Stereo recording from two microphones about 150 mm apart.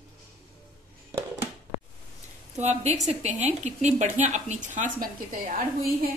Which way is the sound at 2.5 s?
50° right (ahead or behind).